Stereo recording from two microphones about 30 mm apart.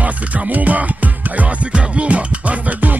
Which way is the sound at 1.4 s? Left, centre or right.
Right.